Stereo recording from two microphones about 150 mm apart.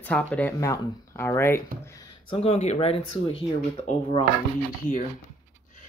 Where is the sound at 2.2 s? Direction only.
40° left (ahead or behind).